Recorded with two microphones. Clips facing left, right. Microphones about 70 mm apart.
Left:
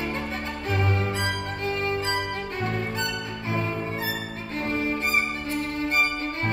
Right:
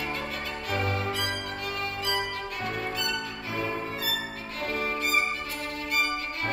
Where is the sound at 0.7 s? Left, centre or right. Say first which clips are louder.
Left 2 dB; left.